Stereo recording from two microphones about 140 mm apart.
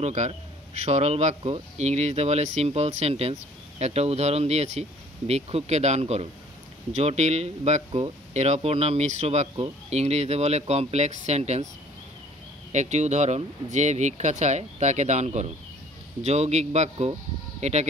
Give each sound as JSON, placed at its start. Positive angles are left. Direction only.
{"t": 0.0, "sound": "speech", "side_deg": -55}
{"t": 12.7, "sound": "speech", "side_deg": -55}